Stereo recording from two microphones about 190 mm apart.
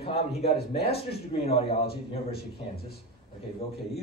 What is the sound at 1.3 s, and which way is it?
Speech, 30° left (ahead or behind).